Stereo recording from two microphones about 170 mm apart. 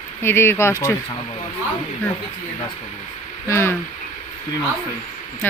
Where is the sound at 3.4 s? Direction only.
15° left (ahead or behind).